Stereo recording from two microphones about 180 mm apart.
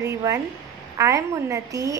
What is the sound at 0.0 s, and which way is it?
Speech, 20° right (ahead or behind).